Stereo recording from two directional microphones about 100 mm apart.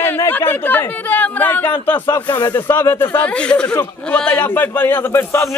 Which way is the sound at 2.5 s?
25° left (ahead or behind).